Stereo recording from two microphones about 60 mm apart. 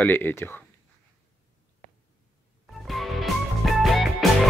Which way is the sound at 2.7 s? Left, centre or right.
Centre.